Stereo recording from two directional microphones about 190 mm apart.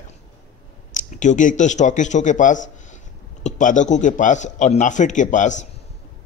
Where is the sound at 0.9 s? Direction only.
40° left (ahead or behind).